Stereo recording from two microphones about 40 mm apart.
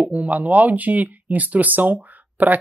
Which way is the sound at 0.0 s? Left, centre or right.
Right.